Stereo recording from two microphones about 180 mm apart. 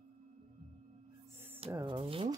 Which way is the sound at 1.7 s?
20° right (ahead or behind).